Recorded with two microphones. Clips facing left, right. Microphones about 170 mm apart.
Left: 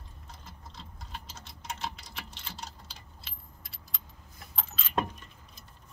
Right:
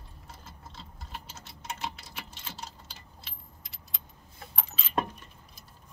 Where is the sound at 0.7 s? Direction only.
5° right (ahead or behind).